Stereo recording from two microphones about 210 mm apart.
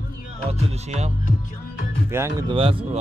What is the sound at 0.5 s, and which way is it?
Music, 30° right (ahead or behind).